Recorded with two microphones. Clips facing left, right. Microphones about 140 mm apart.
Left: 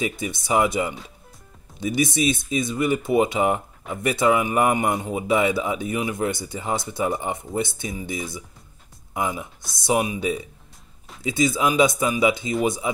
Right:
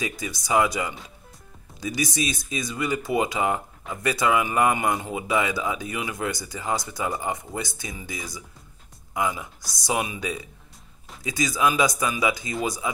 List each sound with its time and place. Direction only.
0.0 s a man's voice: 25° left (ahead or behind)